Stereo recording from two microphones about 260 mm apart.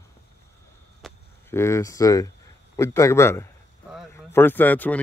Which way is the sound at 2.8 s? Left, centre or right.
Centre.